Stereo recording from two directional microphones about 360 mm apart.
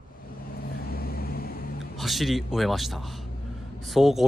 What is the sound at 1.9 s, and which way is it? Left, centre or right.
A man's voice, centre.